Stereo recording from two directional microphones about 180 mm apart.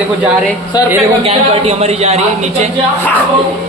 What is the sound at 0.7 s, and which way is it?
Speech, 20° left (ahead or behind).